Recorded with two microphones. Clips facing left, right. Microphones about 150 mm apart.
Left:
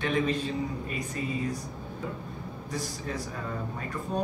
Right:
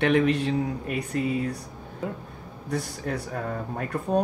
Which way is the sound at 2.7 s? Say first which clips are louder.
Right 5 dB; 65° right (ahead or behind).